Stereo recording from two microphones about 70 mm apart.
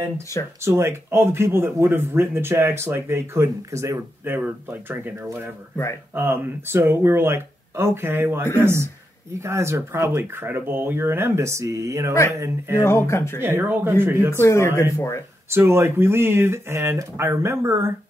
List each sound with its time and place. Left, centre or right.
0.6 s speech: right
4.2 s speech: right
10.1 s speech: right
12.8 s speech: left
13.4 s speech: right
14.3 s speech: left
15.5 s speech: right